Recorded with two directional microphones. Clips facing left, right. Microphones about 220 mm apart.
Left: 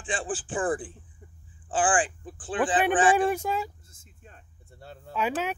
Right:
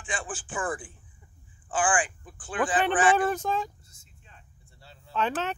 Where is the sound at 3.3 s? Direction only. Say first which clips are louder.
Even; 10° left (ahead or behind).